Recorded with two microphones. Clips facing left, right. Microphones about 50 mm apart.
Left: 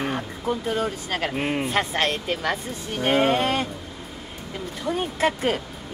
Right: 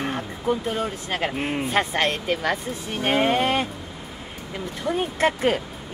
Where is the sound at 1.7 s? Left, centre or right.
Centre.